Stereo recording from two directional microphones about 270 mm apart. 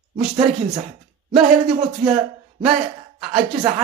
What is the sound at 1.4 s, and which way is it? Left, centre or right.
Speech, right.